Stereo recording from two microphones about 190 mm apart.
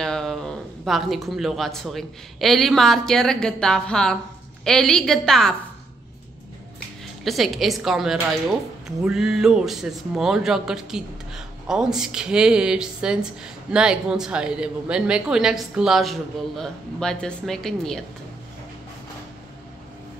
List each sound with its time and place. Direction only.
0.0 s speech: 5° left (ahead or behind)
7.2 s speech: centre (ahead or behind)